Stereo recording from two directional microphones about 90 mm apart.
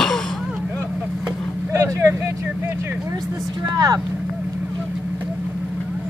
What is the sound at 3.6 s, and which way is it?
Vehicle, 45° right (ahead or behind).